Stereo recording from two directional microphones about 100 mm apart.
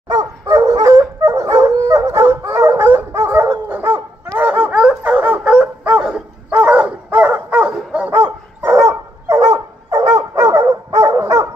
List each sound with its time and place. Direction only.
0.1 s dog: 40° right (ahead or behind)